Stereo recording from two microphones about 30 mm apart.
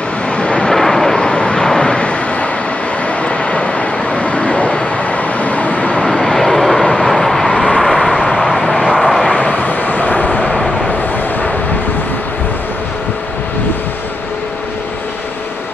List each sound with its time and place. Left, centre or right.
0.4 s vehicle: left
0.7 s vehicle: centre
1.2 s vehicle: left
2.0 s vehicle: left
3.3 s vehicle: left
4.9 s vehicle: left
6.0 s vehicle: centre
9.4 s vehicle: left
9.7 s vehicle: left
10.5 s vehicle: centre